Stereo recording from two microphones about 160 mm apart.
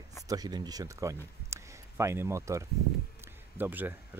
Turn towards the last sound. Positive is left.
turn(degrees=-10)  # may be behind; listen again after turning